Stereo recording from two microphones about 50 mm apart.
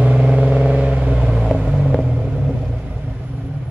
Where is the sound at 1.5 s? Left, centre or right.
Centre.